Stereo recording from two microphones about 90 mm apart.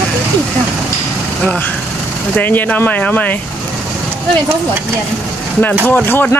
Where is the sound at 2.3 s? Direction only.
20° left (ahead or behind).